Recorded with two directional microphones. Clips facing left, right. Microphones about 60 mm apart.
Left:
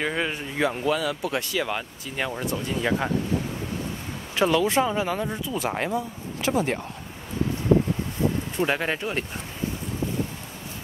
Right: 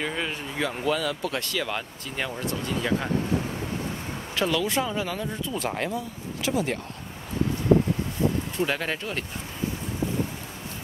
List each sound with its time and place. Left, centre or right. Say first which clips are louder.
0.0 s speech: left 3 dB; centre
2.3 s speech: left 1 dB; left
4.4 s speech: left 4 dB; left
6.4 s speech: left 2 dB; left
8.5 s speech: left 2 dB; centre